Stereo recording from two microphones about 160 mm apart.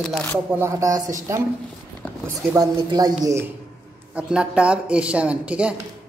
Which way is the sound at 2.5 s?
25° right (ahead or behind).